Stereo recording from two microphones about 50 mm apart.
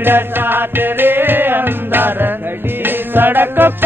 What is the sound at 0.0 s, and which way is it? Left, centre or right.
Music, right.